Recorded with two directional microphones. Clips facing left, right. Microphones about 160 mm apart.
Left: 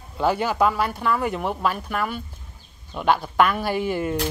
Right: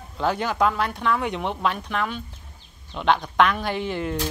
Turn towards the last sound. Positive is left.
turn(degrees=10)  # may be behind; listen again after turning